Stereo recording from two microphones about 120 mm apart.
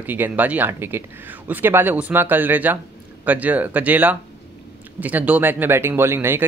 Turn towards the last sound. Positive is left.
turn(degrees=-20)  # may be behind; listen again after turning